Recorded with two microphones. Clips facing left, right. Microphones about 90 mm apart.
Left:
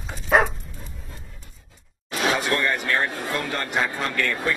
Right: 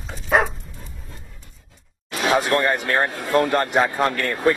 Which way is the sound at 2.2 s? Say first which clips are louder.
Right 4 dB; 40° right (ahead or behind).